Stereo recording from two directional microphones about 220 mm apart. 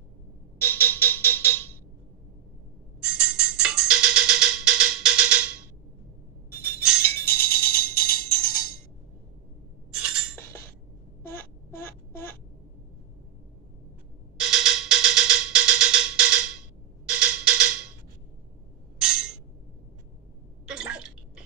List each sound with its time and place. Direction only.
0.6 s music: 10° left (ahead or behind)
3.0 s music: 5° right (ahead or behind)
7.0 s music: 10° left (ahead or behind)
7.8 s music: 40° left (ahead or behind)
9.8 s chink: 5° right (ahead or behind)
11.2 s a sound: 10° left (ahead or behind)
14.3 s music: centre (ahead or behind)
18.9 s music: 5° right (ahead or behind)
20.6 s a sound: 5° right (ahead or behind)